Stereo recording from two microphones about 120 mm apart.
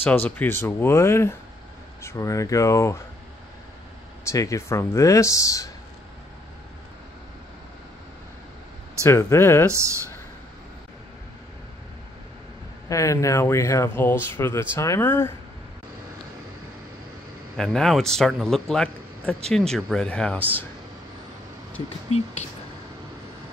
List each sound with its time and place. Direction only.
0.0 s speech: 15° left (ahead or behind)
4.3 s speech: 25° left (ahead or behind)
9.0 s speech: 20° left (ahead or behind)
12.8 s speech: 25° left (ahead or behind)
17.6 s a man's voice: 5° left (ahead or behind)
21.8 s speech: 60° left (ahead or behind)